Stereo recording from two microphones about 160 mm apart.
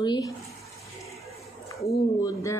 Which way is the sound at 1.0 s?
Centre (ahead or behind).